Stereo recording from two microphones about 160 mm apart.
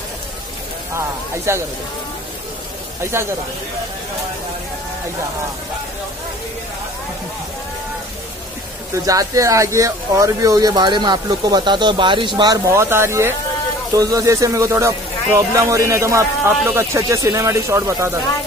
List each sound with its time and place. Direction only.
0.9 s speech: 15° right (ahead or behind)
3.0 s speech: 15° right (ahead or behind)
8.9 s speech: 20° right (ahead or behind)